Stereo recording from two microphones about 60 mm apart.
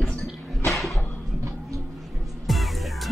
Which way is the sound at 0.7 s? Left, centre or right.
Centre.